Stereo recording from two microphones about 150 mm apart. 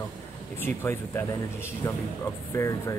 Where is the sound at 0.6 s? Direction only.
15° left (ahead or behind).